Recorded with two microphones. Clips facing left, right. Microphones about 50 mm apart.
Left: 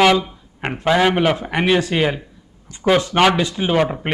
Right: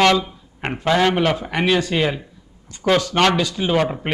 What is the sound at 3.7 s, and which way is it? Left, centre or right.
Speech, centre.